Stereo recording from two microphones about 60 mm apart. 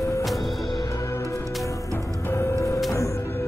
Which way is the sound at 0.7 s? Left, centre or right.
Left.